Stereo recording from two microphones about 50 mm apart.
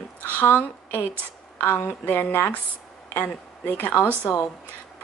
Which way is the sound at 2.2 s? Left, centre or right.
Left.